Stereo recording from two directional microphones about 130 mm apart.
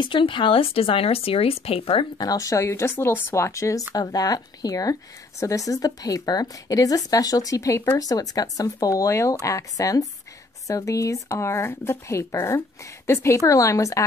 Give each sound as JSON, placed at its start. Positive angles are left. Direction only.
{"t": 0.0, "sound": "speech", "side_deg": 40}
{"t": 2.1, "sound": "a woman's voice", "side_deg": 30}